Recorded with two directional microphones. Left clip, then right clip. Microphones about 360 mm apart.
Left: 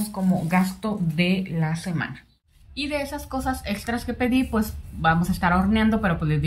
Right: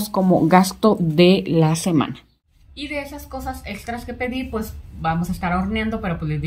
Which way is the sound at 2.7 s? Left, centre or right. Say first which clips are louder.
Left 1 dB; centre.